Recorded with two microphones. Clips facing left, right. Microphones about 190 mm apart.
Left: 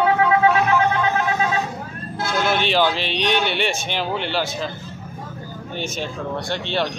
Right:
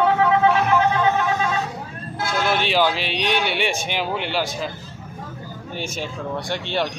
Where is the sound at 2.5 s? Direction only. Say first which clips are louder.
Even; 5° right (ahead or behind).